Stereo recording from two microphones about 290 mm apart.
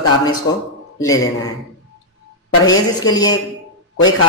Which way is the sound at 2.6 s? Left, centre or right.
Centre.